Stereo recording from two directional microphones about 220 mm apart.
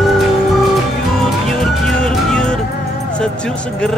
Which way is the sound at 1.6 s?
Centre (ahead or behind).